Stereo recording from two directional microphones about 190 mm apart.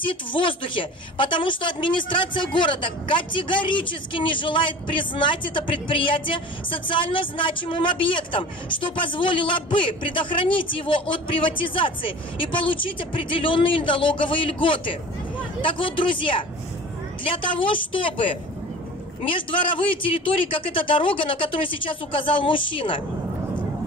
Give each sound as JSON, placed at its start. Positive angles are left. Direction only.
{"t": 0.0, "sound": "a woman's voice", "side_deg": 25}